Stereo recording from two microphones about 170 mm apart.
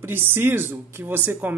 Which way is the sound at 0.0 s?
15° right (ahead or behind).